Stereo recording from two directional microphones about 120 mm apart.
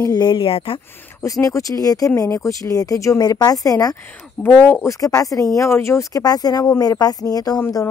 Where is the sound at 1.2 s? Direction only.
25° left (ahead or behind).